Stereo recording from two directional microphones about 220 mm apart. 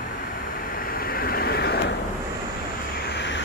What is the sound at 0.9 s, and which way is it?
Vehicle, 40° left (ahead or behind).